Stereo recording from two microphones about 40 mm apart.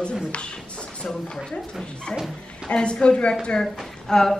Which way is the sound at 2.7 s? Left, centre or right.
Left.